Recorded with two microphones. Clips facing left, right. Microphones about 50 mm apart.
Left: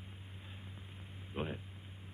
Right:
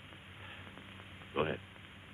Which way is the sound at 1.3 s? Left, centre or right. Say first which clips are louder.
Right 6 dB; right.